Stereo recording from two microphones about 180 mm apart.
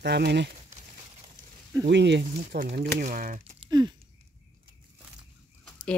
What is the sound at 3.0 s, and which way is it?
Speech, 45° right (ahead or behind).